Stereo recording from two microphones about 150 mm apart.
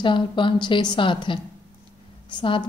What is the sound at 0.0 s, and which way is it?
A woman's voice, 35° left (ahead or behind).